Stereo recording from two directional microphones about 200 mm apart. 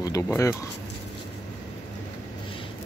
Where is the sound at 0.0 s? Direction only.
15° left (ahead or behind).